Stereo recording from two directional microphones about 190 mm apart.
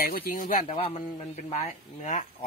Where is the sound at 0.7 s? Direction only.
35° left (ahead or behind).